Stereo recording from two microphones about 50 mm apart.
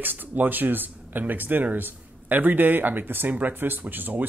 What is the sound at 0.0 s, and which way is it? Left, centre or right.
Speech, right.